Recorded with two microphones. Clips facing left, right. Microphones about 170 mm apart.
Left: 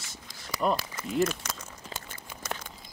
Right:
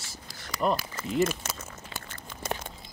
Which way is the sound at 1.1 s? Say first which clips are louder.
Right 1 dB; 5° right (ahead or behind).